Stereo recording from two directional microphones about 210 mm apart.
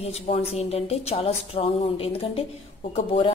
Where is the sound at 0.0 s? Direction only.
30° left (ahead or behind).